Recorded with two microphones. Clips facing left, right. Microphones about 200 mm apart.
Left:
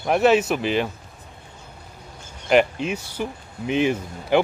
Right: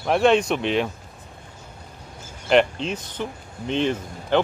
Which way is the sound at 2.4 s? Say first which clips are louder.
Even; 5° left (ahead or behind).